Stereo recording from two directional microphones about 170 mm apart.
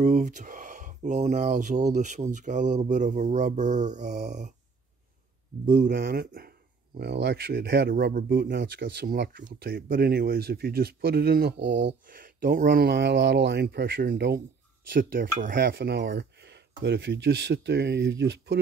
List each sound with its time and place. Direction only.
0.0 s speech: 45° right (ahead or behind)
5.7 s speech: 50° right (ahead or behind)
7.0 s speech: 75° right (ahead or behind)
12.1 s speech: 55° right (ahead or behind)
12.6 s speech: 75° right (ahead or behind)
14.9 s speech: 55° right (ahead or behind); by 18.6 s 75° right (ahead or behind)